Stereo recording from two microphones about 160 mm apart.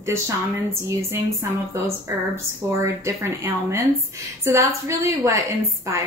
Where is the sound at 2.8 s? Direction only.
15° right (ahead or behind).